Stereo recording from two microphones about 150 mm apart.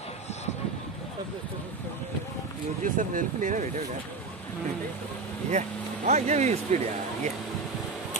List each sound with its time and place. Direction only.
2.8 s speech: 60° right (ahead or behind)
5.5 s speech: 50° right (ahead or behind)